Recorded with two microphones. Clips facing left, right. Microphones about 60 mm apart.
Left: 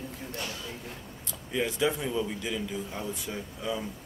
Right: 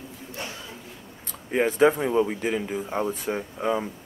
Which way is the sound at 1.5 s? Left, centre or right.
Right.